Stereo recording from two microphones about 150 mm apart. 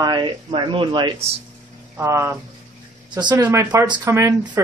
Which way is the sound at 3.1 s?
30° right (ahead or behind).